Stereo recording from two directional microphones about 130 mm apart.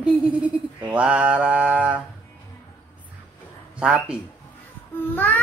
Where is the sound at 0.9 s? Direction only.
10° right (ahead or behind).